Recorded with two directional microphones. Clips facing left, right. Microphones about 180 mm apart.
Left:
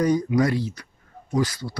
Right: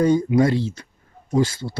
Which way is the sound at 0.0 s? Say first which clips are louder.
Right 3 dB; 25° right (ahead or behind).